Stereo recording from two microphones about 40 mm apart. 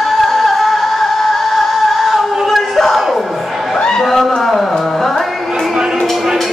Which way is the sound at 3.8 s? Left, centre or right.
Centre.